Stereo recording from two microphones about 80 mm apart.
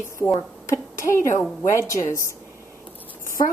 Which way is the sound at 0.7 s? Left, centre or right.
Left.